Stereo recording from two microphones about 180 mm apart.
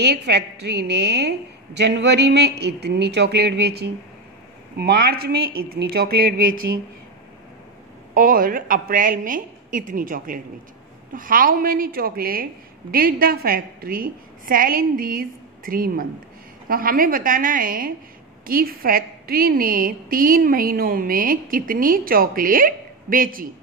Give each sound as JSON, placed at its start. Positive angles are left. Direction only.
{"t": 0.0, "sound": "a woman's voice", "side_deg": -65}
{"t": 8.1, "sound": "a woman's voice", "side_deg": -50}